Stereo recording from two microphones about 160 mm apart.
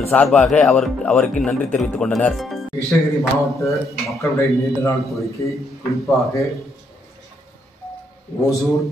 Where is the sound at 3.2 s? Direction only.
20° left (ahead or behind).